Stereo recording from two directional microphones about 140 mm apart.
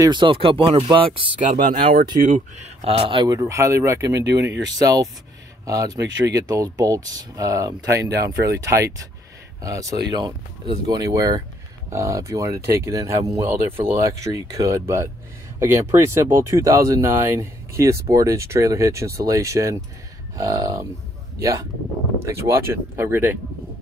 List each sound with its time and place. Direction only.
0.0 s speech: 35° right (ahead or behind)
1.5 s speech: 65° right (ahead or behind); by 3.3 s 35° right (ahead or behind)
3.3 s speech: 20° right (ahead or behind)